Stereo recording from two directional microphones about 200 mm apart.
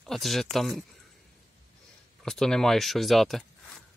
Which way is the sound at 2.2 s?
5° left (ahead or behind).